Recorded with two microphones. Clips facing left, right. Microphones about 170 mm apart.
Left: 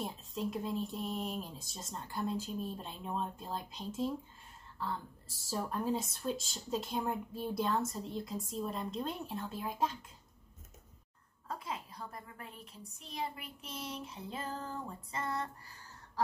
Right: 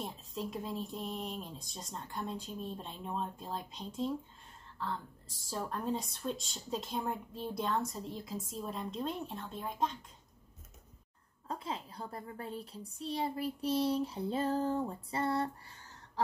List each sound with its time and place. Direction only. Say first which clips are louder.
0.0 s speech: left 2 dB; centre (ahead or behind)
5.5 s speech: left 1 dB; 5° left (ahead or behind)
11.5 s a child's voice: right 2 dB; 30° right (ahead or behind)